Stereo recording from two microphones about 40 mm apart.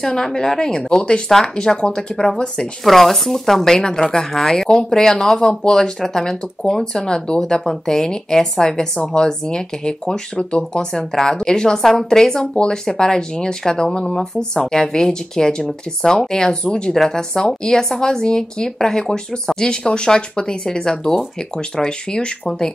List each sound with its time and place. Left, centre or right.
0.0 s a woman's voice: centre
2.8 s a woman's voice: centre; by 10.9 s left
11.0 s a woman's voice: centre